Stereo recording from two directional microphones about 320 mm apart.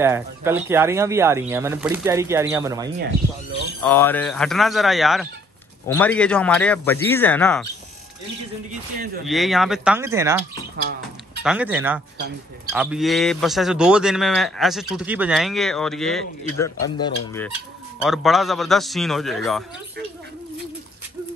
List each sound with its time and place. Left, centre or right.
0.0 s speech: centre
3.8 s a man's voice: centre
8.9 s speech: right
9.2 s a man's voice: centre
11.4 s a man's voice: centre
16.8 s speech: centre
18.0 s a man's voice: centre